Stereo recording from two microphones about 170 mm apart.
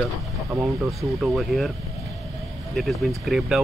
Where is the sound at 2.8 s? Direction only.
Centre (ahead or behind).